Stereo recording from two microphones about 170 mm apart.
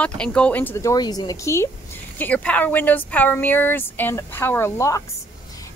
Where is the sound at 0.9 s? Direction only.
25° left (ahead or behind).